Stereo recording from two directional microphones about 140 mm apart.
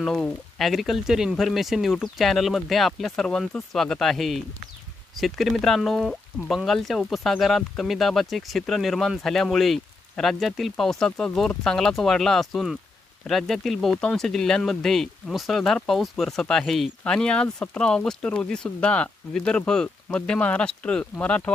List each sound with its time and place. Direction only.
0.0 s speech: 5° left (ahead or behind)